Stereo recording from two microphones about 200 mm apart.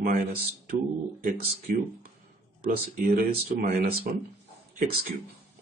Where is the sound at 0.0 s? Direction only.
45° right (ahead or behind).